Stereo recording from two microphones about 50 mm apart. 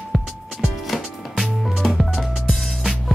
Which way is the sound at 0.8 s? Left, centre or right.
Centre.